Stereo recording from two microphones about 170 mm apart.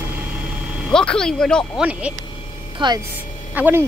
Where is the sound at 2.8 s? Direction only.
25° right (ahead or behind).